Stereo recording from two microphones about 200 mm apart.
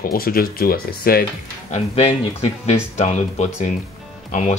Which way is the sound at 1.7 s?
30° left (ahead or behind).